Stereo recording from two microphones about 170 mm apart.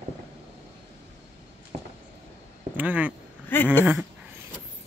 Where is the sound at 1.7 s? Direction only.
50° right (ahead or behind).